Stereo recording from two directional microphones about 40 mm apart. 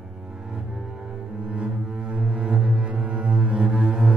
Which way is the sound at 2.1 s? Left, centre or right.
Right.